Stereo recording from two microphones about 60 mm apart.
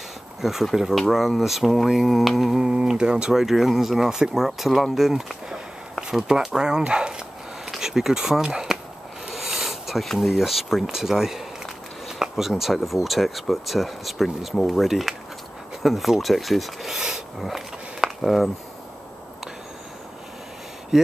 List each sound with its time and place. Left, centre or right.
0.4 s speech: centre
20.9 s speech: centre